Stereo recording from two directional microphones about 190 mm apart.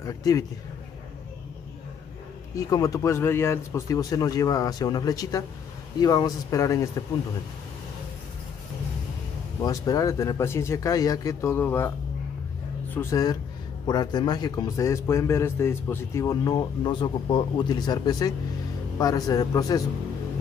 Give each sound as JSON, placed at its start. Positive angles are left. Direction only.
{"t": 0.0, "sound": "a man's voice", "side_deg": 20}
{"t": 2.5, "sound": "a man's voice", "side_deg": 20}
{"t": 9.6, "sound": "speech", "side_deg": 20}
{"t": 12.9, "sound": "a man's voice", "side_deg": 15}